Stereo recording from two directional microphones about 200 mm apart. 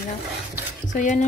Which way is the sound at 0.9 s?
40° left (ahead or behind).